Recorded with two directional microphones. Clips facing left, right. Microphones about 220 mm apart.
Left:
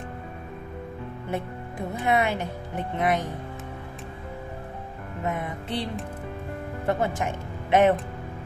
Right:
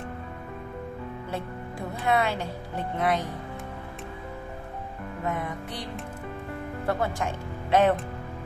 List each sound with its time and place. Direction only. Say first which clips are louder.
1.3 s speech: left 5 dB; 20° left (ahead or behind)
5.2 s music: left 1 dB; 25° left (ahead or behind)
6.9 s speech: left 2 dB; 20° left (ahead or behind)